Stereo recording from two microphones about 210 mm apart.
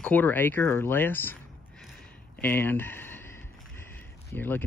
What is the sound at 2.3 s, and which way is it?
Speech, 10° left (ahead or behind).